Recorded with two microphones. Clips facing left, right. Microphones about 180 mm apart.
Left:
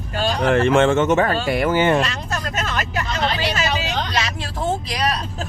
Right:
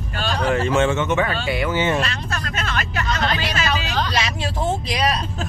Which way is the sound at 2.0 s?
40° left (ahead or behind).